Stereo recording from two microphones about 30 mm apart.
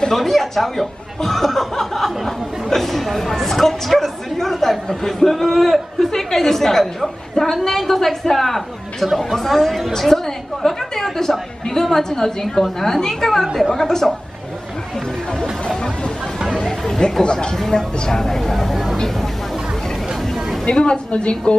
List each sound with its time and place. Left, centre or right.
0.1 s a woman's voice: centre
13.8 s speech: centre
16.5 s chatter: centre
17.2 s speech: left
17.6 s speech: centre
20.6 s a woman's voice: left